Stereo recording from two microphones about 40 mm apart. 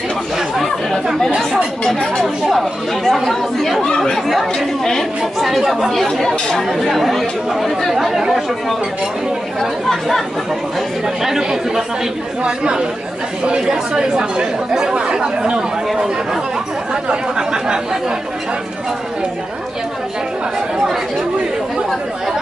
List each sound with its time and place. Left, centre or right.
1.9 s speech: centre
2.5 s speech: centre
9.8 s speech: centre
11.2 s speech: centre
16.9 s speech: centre